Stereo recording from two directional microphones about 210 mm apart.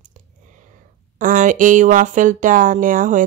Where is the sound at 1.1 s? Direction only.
40° right (ahead or behind).